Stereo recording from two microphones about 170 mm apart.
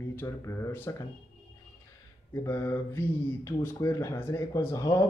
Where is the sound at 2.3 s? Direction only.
15° left (ahead or behind).